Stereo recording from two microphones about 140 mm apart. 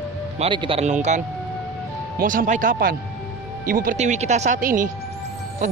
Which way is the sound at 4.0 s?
55° right (ahead or behind).